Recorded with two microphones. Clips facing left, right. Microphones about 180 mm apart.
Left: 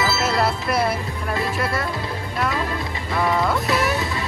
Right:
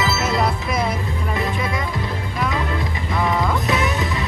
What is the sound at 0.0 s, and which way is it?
Music, 20° right (ahead or behind).